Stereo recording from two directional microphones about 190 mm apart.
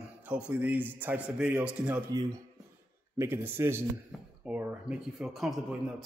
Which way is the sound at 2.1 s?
20° right (ahead or behind).